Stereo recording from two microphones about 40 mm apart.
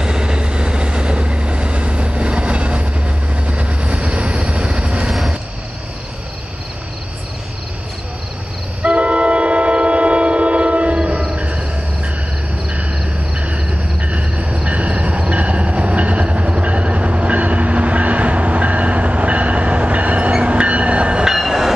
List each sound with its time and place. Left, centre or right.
0.0 s train: centre
3.4 s vehicle: right
8.8 s train: right
11.3 s music: right
13.4 s a sound: right
20.2 s train: right
21.4 s train: centre